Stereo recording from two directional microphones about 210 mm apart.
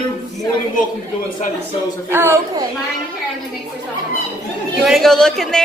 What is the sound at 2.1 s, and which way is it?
Speech, 10° right (ahead or behind).